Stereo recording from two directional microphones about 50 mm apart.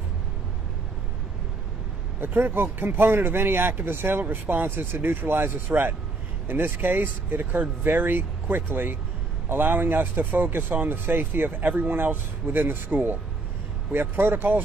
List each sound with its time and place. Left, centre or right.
2.1 s speech: right